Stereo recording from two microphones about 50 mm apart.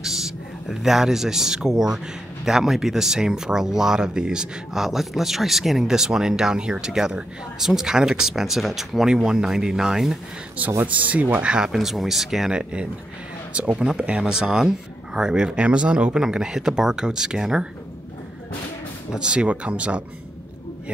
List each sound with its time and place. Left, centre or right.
0.0 s speech: centre
4.8 s speech: centre
9.1 s speech: centre
10.6 s speech: right
11.4 s speech: centre
11.7 s speech: centre
13.5 s speech: right
19.1 s speech: centre